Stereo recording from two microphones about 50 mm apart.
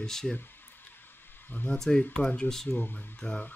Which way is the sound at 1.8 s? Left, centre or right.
Centre.